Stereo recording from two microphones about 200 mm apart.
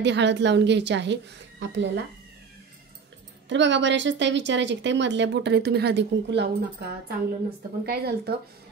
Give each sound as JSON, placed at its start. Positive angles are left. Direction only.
{"t": 0.0, "sound": "a woman's voice", "side_deg": -60}
{"t": 3.4, "sound": "a woman's voice", "side_deg": -65}